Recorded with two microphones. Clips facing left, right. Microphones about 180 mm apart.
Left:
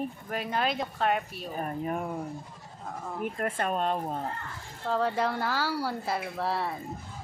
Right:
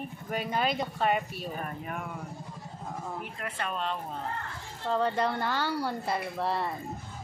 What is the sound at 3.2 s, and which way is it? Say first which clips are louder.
Speech: left 6 dB; 45° left (ahead or behind).